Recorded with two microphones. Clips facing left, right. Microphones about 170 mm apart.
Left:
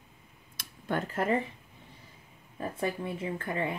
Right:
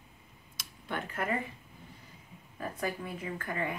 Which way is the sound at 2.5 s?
25° left (ahead or behind).